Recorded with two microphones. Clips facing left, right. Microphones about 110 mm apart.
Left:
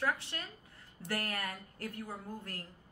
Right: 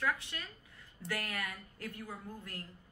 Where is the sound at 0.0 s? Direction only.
30° left (ahead or behind).